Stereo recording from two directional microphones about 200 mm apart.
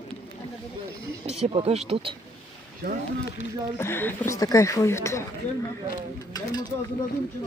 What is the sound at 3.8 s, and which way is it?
Speech, 10° left (ahead or behind).